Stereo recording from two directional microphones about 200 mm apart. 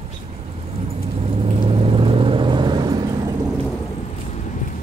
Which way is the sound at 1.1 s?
30° right (ahead or behind).